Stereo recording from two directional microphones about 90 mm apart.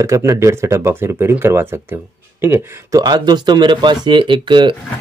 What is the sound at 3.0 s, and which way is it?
Speech, 50° right (ahead or behind).